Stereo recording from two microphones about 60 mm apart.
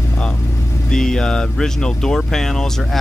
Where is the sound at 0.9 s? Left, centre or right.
Centre.